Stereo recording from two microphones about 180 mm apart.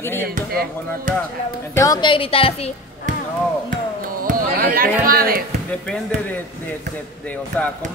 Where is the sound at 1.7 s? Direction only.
20° left (ahead or behind).